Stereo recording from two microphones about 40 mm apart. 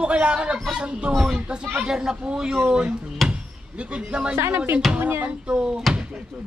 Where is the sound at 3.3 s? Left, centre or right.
Right.